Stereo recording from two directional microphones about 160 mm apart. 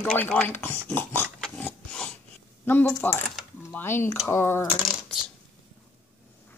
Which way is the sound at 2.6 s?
10° left (ahead or behind).